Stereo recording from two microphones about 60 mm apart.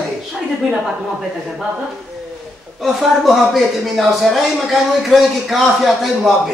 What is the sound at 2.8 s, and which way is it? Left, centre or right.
A man's voice, centre.